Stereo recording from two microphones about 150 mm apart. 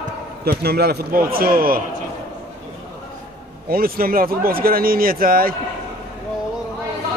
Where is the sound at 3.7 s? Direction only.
75° right (ahead or behind).